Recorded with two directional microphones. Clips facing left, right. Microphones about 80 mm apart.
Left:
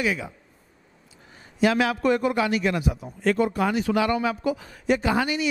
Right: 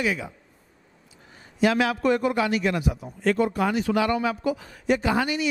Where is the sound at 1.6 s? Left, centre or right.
Centre.